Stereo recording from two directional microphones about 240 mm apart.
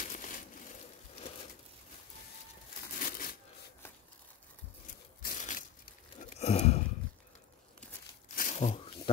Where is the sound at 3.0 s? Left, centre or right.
Left.